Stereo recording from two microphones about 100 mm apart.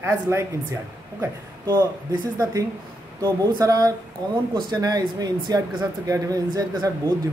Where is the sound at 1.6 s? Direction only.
40° right (ahead or behind).